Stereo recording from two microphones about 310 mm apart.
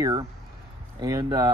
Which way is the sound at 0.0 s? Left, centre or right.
Centre.